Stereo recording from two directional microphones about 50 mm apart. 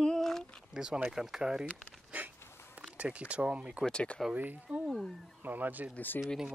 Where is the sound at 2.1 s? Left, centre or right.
Right.